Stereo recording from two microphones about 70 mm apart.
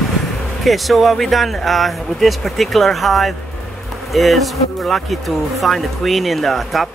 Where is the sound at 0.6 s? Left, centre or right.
Centre.